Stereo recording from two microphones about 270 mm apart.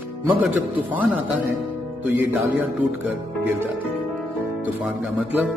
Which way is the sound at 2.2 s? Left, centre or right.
Centre.